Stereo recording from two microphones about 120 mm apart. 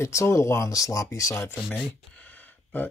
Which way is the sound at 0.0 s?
25° left (ahead or behind).